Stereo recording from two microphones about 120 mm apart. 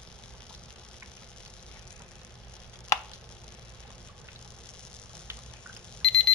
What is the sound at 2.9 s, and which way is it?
Chopping, 25° left (ahead or behind).